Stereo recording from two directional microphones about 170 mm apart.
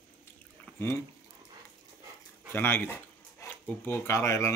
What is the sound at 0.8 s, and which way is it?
Speech, 15° left (ahead or behind).